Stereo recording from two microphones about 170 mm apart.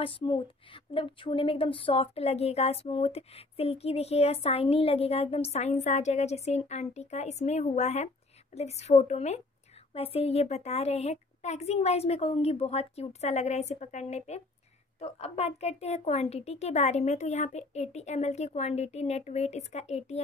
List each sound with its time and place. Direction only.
0.0 s speech: 30° left (ahead or behind)